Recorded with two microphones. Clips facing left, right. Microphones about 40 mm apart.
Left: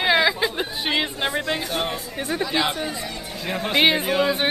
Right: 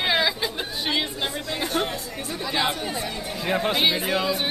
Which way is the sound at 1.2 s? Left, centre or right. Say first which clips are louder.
Left 4 dB; left.